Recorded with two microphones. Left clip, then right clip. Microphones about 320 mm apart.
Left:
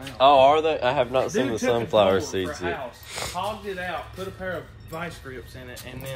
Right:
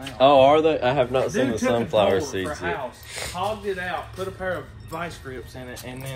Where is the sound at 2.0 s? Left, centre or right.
Left.